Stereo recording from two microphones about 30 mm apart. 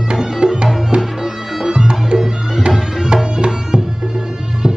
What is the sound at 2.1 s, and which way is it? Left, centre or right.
Music, centre.